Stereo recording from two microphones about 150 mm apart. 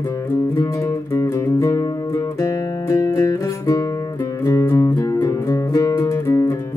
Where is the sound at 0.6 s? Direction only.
20° left (ahead or behind).